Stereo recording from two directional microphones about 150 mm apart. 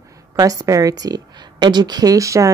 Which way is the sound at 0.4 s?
25° right (ahead or behind).